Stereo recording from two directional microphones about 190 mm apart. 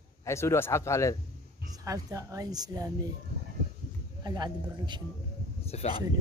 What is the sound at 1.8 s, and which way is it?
Speech, 15° right (ahead or behind).